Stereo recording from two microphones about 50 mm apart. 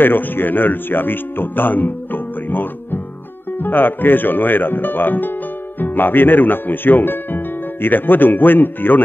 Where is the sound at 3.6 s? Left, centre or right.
Left.